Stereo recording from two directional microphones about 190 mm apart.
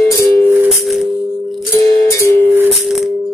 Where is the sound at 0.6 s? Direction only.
Centre (ahead or behind).